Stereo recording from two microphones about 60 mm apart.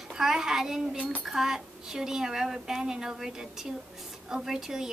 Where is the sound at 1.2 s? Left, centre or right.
Centre.